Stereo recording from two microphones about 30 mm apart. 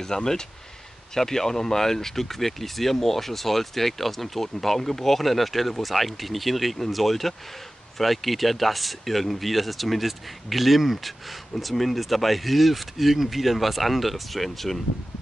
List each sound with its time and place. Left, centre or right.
0.0 s speech: centre